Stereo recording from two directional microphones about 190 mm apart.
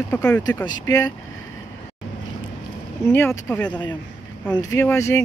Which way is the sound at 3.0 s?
10° left (ahead or behind).